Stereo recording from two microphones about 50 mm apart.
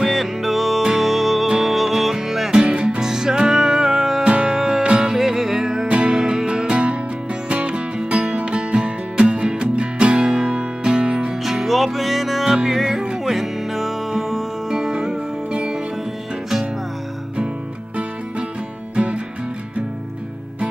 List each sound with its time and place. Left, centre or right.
0.0 s music: centre
2.5 s music: right
4.2 s music: right
4.6 s music: centre
5.1 s music: centre
5.9 s music: right
11.4 s music: centre
18.9 s music: right